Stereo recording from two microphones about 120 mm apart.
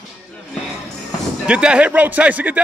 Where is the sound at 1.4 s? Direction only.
10° right (ahead or behind).